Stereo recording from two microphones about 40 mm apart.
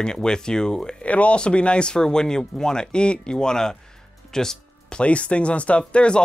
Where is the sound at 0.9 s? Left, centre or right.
Left; by 3.7 s centre.